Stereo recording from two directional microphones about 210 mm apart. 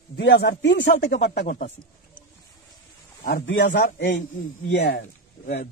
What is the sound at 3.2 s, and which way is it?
Speech, 55° left (ahead or behind).